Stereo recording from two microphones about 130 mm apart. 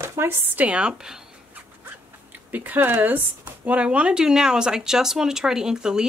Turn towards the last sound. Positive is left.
turn(degrees=-5)  # may be behind; listen again after turning